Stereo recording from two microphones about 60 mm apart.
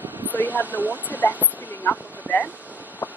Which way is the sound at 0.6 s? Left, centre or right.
Right.